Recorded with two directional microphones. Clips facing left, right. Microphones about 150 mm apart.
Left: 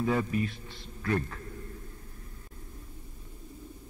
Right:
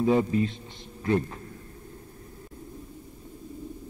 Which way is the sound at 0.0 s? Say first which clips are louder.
Right 6 dB; 25° right (ahead or behind).